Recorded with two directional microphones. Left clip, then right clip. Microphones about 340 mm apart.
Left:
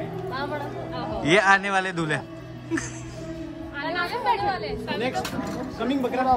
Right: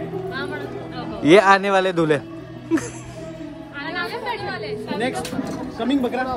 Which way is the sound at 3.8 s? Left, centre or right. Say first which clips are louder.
Even; left.